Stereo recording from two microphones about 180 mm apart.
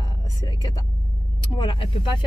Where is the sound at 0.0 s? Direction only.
25° left (ahead or behind).